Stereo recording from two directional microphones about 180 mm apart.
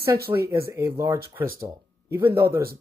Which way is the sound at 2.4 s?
15° right (ahead or behind).